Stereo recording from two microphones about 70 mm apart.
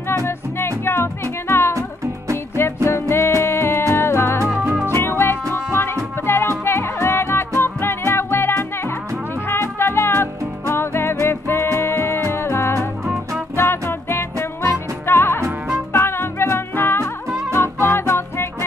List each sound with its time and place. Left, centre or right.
0.2 s music: left